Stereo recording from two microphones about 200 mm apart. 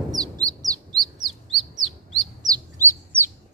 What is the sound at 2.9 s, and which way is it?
Chirp, 10° right (ahead or behind).